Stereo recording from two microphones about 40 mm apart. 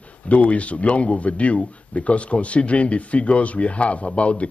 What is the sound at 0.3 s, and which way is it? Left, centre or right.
Speech, left.